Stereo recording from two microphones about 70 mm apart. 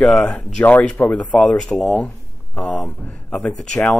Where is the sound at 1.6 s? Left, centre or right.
Centre.